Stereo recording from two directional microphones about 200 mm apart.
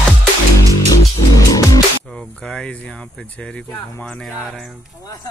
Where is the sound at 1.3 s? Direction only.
15° left (ahead or behind).